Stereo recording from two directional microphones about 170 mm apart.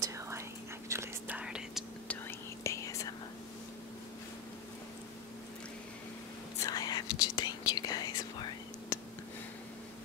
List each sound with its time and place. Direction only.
0.8 s whispering: 15° right (ahead or behind)
2.0 s whispering: 15° left (ahead or behind)
6.6 s whispering: 20° left (ahead or behind)